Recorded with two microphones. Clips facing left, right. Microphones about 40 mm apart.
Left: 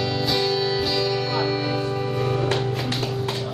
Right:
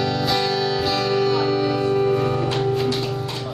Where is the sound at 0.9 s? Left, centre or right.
Right.